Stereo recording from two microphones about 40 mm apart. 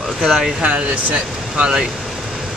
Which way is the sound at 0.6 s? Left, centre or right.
Right.